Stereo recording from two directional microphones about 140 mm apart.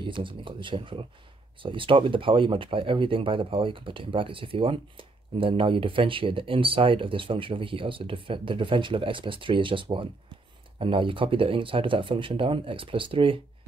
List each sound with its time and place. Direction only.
0.0 s speech: 35° right (ahead or behind)